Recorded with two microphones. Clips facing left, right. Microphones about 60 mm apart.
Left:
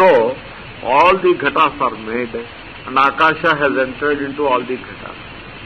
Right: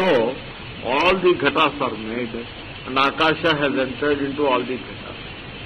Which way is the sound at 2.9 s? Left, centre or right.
Left.